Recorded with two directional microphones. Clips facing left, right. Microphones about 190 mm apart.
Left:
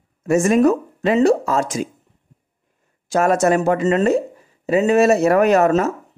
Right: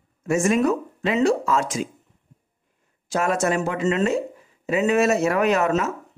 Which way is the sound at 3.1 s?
45° left (ahead or behind).